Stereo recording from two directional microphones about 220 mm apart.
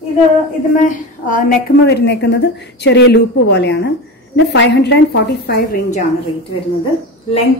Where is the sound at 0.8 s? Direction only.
40° left (ahead or behind).